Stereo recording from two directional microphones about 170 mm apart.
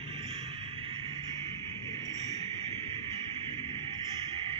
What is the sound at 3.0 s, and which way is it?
Music, 30° right (ahead or behind).